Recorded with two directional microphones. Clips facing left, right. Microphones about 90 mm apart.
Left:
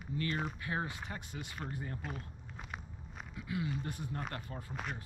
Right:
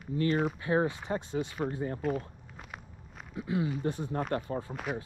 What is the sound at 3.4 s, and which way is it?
Speech, 25° right (ahead or behind).